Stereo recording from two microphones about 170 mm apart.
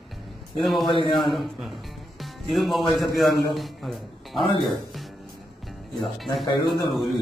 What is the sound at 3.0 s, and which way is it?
A man's voice, centre (ahead or behind).